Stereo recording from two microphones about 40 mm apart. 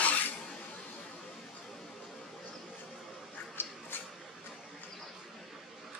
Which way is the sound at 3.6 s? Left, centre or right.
Left.